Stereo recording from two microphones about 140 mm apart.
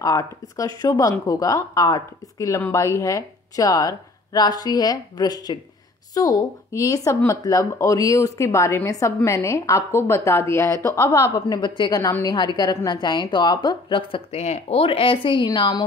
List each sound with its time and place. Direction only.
0.0 s speech: 25° left (ahead or behind)
12.0 s a woman's voice: 25° left (ahead or behind)
14.3 s a woman's voice: 50° left (ahead or behind); by 15.8 s 30° left (ahead or behind)